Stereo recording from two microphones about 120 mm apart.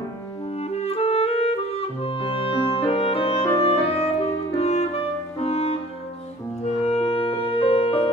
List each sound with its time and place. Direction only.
0.6 s clarinet: 60° left (ahead or behind)
3.8 s music: 55° left (ahead or behind)
6.6 s clarinet: 60° left (ahead or behind)